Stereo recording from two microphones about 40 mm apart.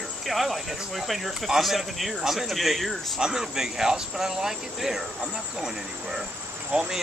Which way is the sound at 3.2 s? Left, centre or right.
Centre.